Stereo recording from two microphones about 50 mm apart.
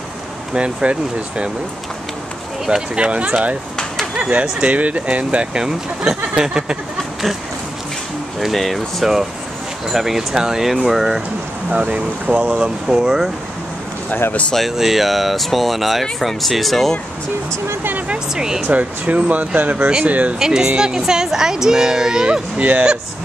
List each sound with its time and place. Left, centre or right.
0.5 s speech: centre
3.0 s speech: right
8.4 s a woman's voice: centre
11.7 s speech: right
14.8 s speech: centre
18.3 s a woman's voice: centre
18.7 s speech: right
20.3 s a woman's voice: centre
22.6 s speech: right